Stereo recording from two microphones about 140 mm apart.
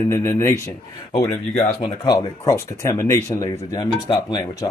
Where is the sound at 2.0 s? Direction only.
25° left (ahead or behind).